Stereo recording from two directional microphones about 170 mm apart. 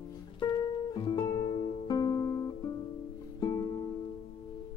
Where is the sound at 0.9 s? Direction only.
25° left (ahead or behind).